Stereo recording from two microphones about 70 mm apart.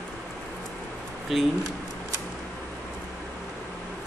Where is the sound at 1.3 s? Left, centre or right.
Centre.